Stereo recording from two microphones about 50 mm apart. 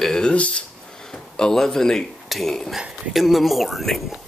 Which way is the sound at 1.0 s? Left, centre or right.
Centre.